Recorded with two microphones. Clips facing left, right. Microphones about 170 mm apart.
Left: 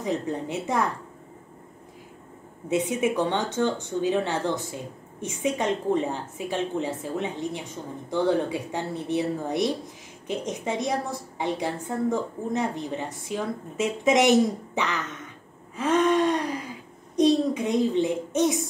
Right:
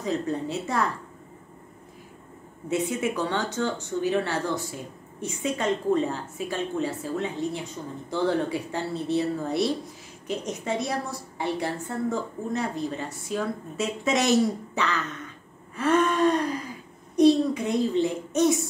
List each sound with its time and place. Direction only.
0.0 s speech: 20° left (ahead or behind)
2.7 s a woman's voice: 20° left (ahead or behind)